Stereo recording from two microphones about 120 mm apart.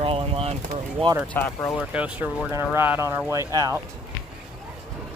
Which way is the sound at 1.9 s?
10° right (ahead or behind).